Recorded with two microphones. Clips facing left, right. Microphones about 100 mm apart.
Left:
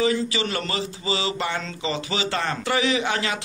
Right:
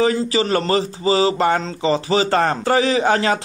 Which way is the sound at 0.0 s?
40° right (ahead or behind).